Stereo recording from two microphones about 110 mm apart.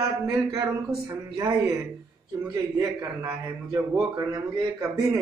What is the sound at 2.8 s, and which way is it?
A man's voice, 25° right (ahead or behind).